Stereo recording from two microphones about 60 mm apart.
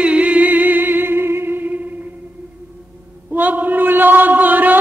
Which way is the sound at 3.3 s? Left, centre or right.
Right.